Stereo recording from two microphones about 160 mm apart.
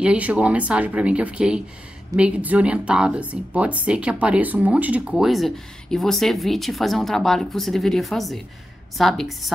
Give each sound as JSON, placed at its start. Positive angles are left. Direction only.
{"t": 0.0, "sound": "speech", "side_deg": -10}